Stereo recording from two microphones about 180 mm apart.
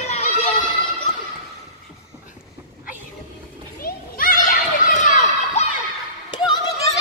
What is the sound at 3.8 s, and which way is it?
Children playing, 50° left (ahead or behind).